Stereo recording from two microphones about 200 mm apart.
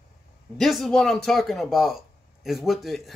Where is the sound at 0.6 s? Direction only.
Centre (ahead or behind).